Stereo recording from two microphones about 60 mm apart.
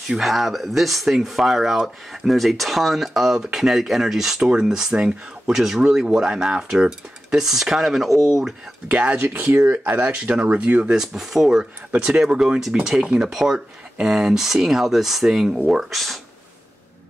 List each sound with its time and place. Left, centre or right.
0.2 s speech: centre
4.4 s speech: right
4.6 s speech: centre
8.1 s speech: right
8.8 s speech: right
9.3 s speech: right; by 16.2 s centre